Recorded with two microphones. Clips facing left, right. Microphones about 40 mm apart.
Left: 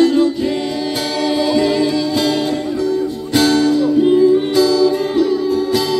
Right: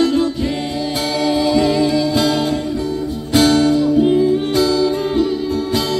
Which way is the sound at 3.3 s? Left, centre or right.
Centre.